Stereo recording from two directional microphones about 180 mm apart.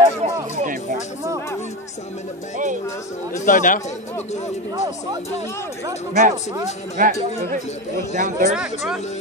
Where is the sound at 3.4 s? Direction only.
45° left (ahead or behind).